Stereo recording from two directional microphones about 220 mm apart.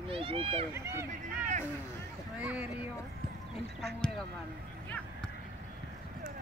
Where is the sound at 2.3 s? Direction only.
5° right (ahead or behind).